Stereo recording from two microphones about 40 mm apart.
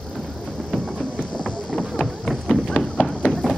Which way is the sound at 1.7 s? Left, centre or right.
Centre.